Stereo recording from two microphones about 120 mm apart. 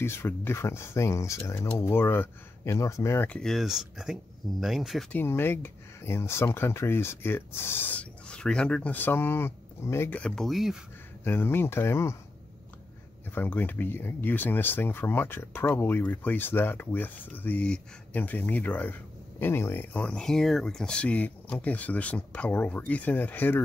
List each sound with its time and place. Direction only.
0.0 s speech: 20° left (ahead or behind)
3.3 s speech: centre (ahead or behind)
5.1 s speech: 20° left (ahead or behind); by 10.8 s centre (ahead or behind)
11.2 s speech: 20° left (ahead or behind)
13.3 s speech: 15° left (ahead or behind)